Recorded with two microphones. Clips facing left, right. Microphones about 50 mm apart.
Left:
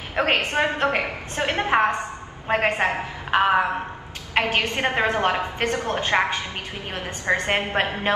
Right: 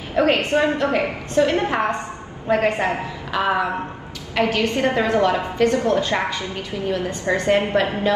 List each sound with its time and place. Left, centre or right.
0.1 s a woman's voice: left